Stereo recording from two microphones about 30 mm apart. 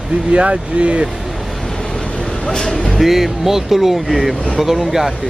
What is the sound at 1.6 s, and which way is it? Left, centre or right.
Vehicle, centre.